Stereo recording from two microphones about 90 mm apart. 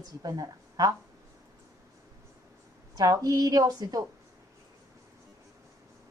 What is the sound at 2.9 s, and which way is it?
A woman's voice, 40° right (ahead or behind).